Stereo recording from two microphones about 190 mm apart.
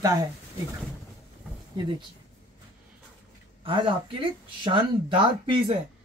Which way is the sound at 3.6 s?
30° right (ahead or behind).